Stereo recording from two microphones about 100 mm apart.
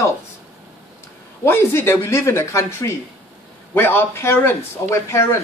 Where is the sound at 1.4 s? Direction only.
25° left (ahead or behind).